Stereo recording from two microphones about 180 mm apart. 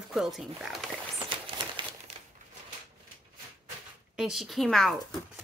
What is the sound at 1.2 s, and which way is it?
Crumpling, 30° right (ahead or behind).